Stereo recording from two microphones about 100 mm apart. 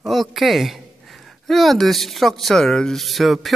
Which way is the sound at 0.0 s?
Centre (ahead or behind).